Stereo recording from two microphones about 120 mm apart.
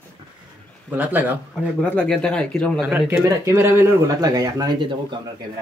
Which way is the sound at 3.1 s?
25° right (ahead or behind).